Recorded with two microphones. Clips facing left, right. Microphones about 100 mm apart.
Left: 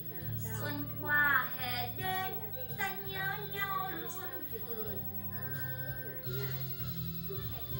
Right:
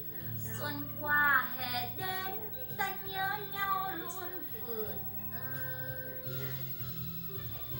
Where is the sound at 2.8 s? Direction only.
20° right (ahead or behind).